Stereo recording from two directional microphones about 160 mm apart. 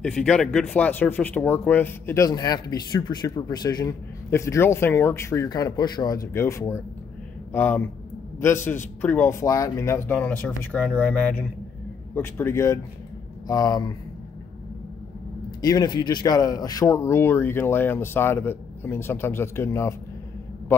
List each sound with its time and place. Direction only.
0.0 s speech: 5° left (ahead or behind); by 13.9 s 25° left (ahead or behind)
15.6 s speech: 25° left (ahead or behind)